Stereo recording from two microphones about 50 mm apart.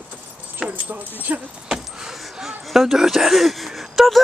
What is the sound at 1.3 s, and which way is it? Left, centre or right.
Speech, right.